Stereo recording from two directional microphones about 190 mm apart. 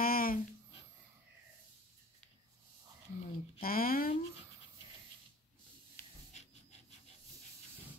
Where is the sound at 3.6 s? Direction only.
50° left (ahead or behind).